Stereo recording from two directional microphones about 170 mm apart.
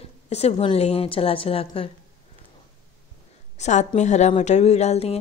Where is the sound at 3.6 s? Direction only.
45° left (ahead or behind).